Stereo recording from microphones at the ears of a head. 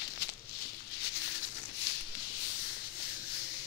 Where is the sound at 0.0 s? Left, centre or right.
Left.